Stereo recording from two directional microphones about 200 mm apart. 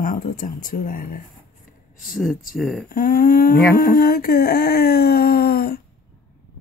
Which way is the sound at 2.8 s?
45° left (ahead or behind).